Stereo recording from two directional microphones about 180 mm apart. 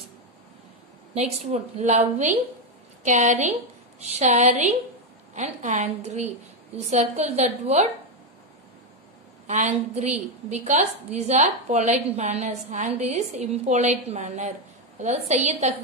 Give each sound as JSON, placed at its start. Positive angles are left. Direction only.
{"t": 1.1, "sound": "a woman's voice", "side_deg": -35}
{"t": 9.5, "sound": "a woman's voice", "side_deg": -40}